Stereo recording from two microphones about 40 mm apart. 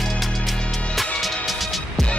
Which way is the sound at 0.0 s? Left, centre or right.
Centre.